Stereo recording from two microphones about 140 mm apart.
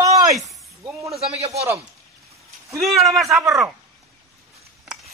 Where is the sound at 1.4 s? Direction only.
50° right (ahead or behind).